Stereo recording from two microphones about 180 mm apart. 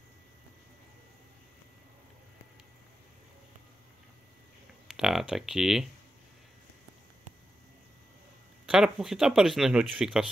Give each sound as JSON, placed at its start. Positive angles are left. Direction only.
{"t": 4.8, "sound": "speech", "side_deg": 0}
{"t": 8.6, "sound": "speech", "side_deg": -5}